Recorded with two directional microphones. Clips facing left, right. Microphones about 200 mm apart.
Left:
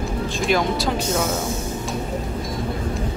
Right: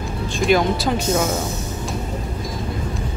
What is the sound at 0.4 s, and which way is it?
Speech, centre (ahead or behind).